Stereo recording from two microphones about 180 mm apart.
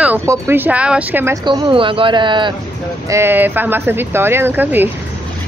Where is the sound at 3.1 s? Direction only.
10° right (ahead or behind).